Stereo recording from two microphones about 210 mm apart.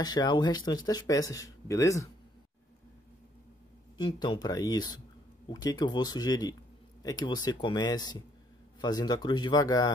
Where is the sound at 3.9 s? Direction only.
20° left (ahead or behind).